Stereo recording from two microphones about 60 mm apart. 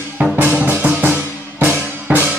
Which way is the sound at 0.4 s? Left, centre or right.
Right.